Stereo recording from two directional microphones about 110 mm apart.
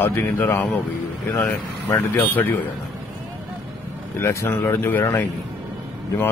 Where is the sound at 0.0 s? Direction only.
20° left (ahead or behind).